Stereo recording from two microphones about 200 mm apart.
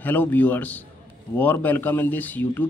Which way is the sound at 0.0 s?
10° left (ahead or behind).